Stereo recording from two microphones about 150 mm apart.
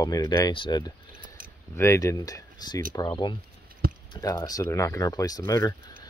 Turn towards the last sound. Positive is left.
turn(degrees=20)  # may be behind; listen again after turning